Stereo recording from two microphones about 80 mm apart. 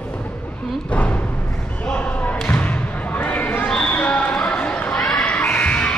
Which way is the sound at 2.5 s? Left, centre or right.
Centre.